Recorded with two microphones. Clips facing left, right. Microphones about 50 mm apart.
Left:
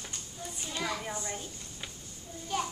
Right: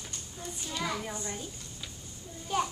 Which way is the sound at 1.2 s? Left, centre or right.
Centre.